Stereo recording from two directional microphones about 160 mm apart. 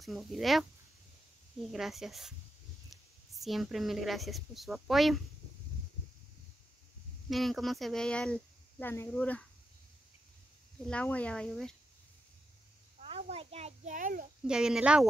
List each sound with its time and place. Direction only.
0.0 s speech: centre (ahead or behind)
1.7 s speech: centre (ahead or behind)
7.2 s speech: centre (ahead or behind)
10.9 s speech: 5° left (ahead or behind)
13.0 s a child's voice: 40° right (ahead or behind); by 14.2 s 55° right (ahead or behind)
14.4 s speech: 5° right (ahead or behind)